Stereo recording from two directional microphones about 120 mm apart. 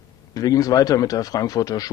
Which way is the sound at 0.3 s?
30° left (ahead or behind).